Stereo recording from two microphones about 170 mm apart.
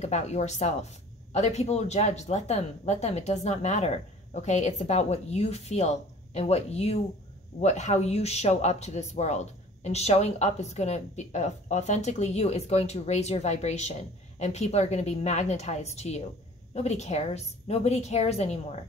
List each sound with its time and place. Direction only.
0.0 s a woman's voice: 40° left (ahead or behind)